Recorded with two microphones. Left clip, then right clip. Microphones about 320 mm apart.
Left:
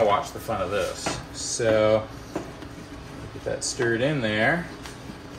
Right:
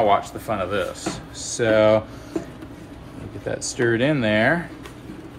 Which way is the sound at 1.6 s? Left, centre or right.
Right.